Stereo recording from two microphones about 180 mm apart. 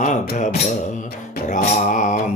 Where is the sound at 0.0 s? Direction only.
45° left (ahead or behind).